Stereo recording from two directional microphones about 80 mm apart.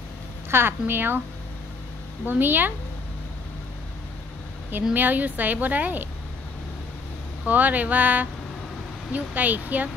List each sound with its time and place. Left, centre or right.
0.5 s speech: right
2.2 s speech: right
4.9 s speech: right
7.4 s speech: right